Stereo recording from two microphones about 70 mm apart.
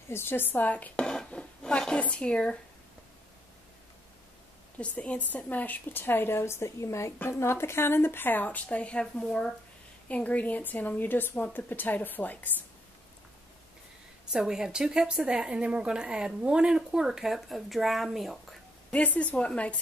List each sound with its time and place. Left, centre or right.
0.1 s a woman's voice: left
0.9 s a sound: centre
4.7 s a woman's voice: centre
14.3 s a woman's voice: centre
18.9 s a woman's voice: left